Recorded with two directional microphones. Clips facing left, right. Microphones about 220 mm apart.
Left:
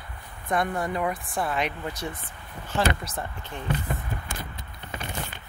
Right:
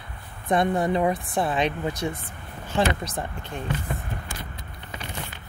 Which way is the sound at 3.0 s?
15° right (ahead or behind).